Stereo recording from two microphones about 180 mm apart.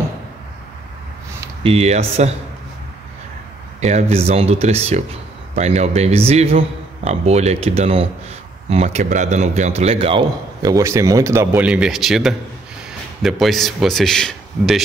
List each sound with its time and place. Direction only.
1.6 s speech: 35° right (ahead or behind)
3.8 s a man's voice: 35° right (ahead or behind); by 14.8 s 5° left (ahead or behind)